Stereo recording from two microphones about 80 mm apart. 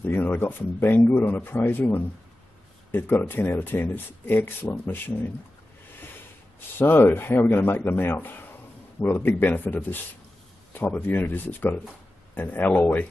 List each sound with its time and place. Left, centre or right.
0.0 s speech: left
6.8 s speech: left